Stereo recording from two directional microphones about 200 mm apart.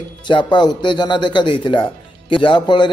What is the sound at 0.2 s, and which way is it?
Speech, 25° left (ahead or behind).